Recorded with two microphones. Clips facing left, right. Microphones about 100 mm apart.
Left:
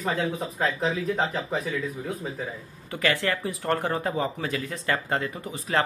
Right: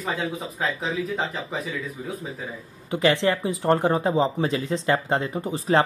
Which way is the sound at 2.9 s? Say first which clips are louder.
Right 5 dB; 20° right (ahead or behind).